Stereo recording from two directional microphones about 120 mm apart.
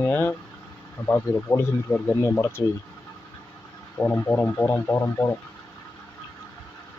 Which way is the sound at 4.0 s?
20° left (ahead or behind).